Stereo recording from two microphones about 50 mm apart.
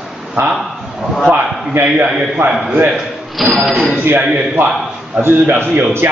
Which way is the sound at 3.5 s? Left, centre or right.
Centre.